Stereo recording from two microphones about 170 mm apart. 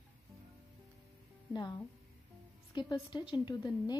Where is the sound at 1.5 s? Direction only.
25° left (ahead or behind).